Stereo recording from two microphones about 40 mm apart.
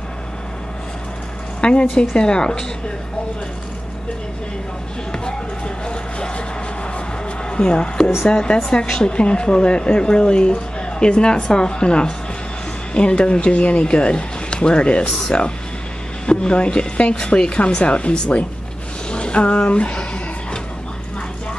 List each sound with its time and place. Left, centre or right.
1.6 s speech: left
5.9 s speech: left
7.4 s speech: left